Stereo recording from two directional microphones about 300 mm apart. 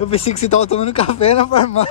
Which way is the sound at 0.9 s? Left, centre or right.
Left.